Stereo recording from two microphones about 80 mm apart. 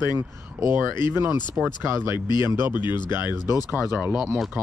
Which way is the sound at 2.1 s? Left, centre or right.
Left.